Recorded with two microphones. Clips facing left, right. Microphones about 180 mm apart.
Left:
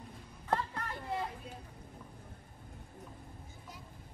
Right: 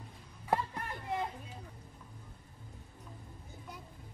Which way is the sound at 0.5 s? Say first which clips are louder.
Right 1 dB; 15° right (ahead or behind).